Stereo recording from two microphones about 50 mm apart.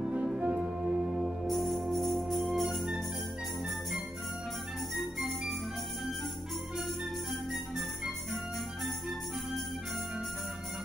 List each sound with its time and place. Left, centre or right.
0.4 s music: right
1.5 s music: centre
7.5 s music: centre